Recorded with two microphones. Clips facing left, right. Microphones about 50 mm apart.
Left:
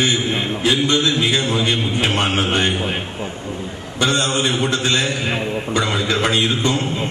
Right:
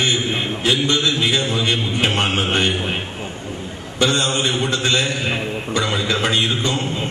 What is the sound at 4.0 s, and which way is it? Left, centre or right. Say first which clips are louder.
Speech: even; left.